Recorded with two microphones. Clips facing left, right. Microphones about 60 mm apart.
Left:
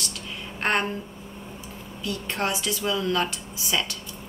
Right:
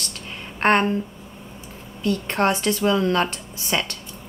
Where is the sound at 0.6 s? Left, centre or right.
Right.